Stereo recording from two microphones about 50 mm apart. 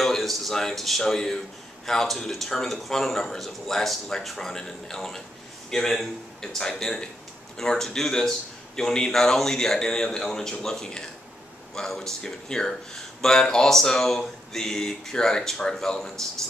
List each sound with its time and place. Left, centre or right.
0.0 s a man's voice: centre